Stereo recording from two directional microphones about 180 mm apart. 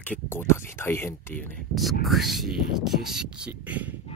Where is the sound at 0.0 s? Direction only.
10° left (ahead or behind).